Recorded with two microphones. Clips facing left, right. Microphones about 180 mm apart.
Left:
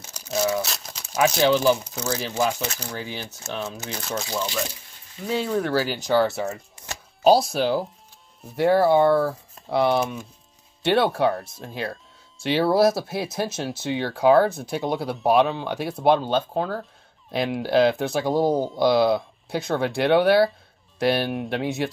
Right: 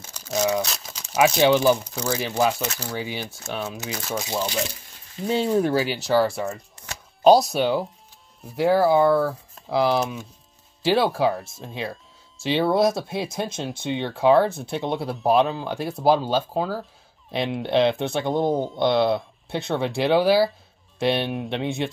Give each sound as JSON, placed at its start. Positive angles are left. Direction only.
{"t": 0.3, "sound": "crumpling", "side_deg": -15}
{"t": 0.6, "sound": "crumpling", "side_deg": 0}
{"t": 1.6, "sound": "speech", "side_deg": -10}
{"t": 5.2, "sound": "speech", "side_deg": -25}
{"t": 6.0, "sound": "speech", "side_deg": 0}